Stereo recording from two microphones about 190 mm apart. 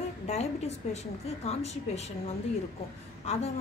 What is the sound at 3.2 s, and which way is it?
Speech, 35° left (ahead or behind).